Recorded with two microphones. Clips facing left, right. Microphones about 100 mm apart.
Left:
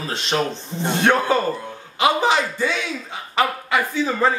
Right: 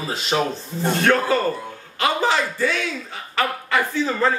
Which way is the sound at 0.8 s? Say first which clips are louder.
Left 1 dB; 20° left (ahead or behind).